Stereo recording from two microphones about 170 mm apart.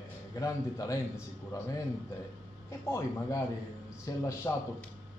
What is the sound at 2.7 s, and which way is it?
Speech, 15° left (ahead or behind).